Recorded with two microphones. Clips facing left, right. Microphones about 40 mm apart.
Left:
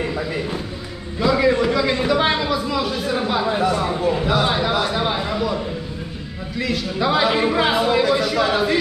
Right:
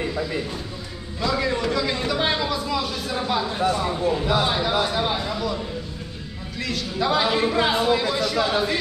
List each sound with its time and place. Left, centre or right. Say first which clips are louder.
1.2 s a sound: left 6 dB; centre
3.0 s speech: left 4 dB; centre
6.6 s speech: left 4 dB; centre